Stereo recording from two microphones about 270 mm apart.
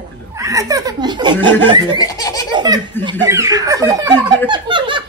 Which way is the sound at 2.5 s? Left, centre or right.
Centre.